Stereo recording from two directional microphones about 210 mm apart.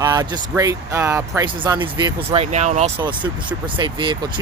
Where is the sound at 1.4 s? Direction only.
20° right (ahead or behind).